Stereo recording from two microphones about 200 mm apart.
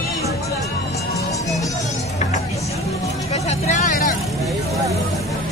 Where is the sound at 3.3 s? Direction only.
35° left (ahead or behind).